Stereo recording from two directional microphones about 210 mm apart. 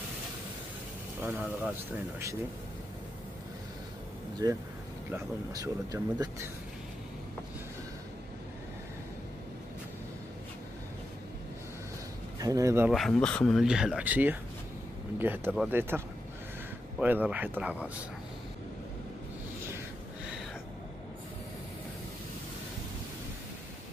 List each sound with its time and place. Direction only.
4.4 s speech: 15° right (ahead or behind)
12.4 s speech: 15° right (ahead or behind)
12.9 s speech: centre (ahead or behind)
17.0 s speech: 5° right (ahead or behind)